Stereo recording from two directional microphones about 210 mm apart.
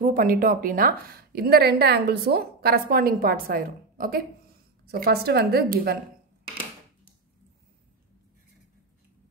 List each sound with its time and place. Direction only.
0.0 s a woman's voice: 40° right (ahead or behind)